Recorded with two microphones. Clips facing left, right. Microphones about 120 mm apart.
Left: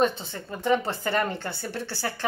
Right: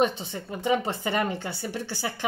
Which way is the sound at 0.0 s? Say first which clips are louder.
Even; 15° right (ahead or behind).